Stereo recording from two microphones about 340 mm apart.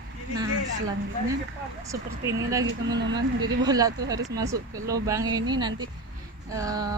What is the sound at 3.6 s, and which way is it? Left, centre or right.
Speech, centre.